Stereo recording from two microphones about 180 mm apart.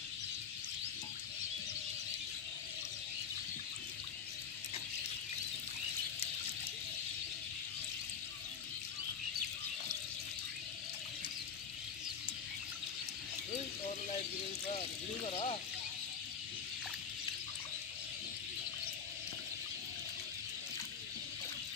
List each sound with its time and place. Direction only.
15.2 s speech: 35° left (ahead or behind)